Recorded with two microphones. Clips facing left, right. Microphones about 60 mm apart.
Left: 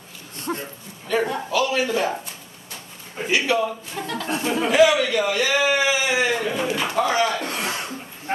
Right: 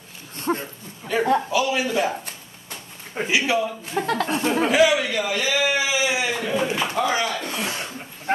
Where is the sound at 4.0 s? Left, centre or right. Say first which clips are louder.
Right 8 dB; right.